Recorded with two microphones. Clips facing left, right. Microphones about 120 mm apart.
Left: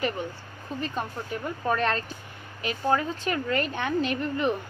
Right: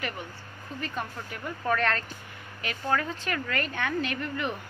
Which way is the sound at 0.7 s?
25° left (ahead or behind).